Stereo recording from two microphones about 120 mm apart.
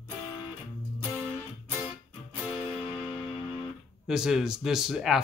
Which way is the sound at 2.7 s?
Centre (ahead or behind).